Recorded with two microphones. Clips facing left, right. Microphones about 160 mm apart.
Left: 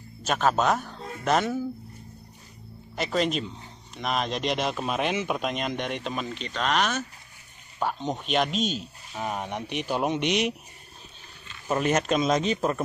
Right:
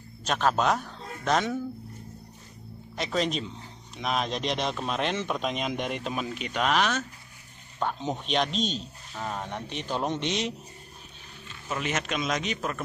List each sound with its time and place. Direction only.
0.2 s speech: 5° left (ahead or behind)
3.0 s speech: centre (ahead or behind)
11.7 s a man's voice: 40° left (ahead or behind)